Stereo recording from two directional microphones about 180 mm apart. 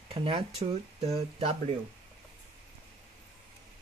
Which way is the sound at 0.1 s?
30° right (ahead or behind).